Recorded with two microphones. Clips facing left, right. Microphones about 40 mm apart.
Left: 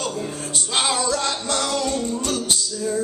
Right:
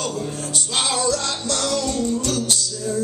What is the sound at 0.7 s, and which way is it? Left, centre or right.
Music, centre.